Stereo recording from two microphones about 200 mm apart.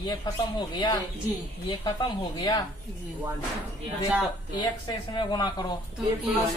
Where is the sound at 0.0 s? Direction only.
20° left (ahead or behind).